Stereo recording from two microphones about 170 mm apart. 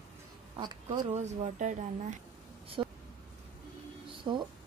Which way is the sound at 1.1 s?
45° right (ahead or behind).